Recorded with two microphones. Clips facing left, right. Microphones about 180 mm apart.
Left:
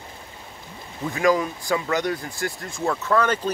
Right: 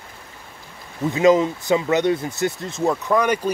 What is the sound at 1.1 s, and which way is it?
Speech, 20° right (ahead or behind).